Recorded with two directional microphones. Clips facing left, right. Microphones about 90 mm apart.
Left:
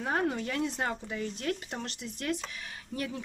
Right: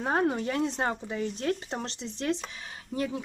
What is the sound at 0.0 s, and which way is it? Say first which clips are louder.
Speech: right 4 dB; 30° right (ahead or behind).